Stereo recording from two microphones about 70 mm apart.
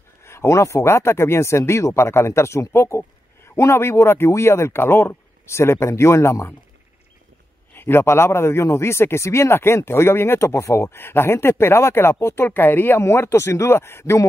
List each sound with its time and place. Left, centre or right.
0.2 s speech: left
7.7 s speech: left